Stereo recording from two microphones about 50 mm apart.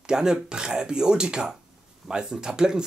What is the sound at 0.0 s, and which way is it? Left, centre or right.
Speech, centre.